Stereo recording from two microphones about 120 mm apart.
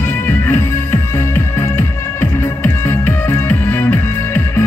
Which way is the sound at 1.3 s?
20° left (ahead or behind).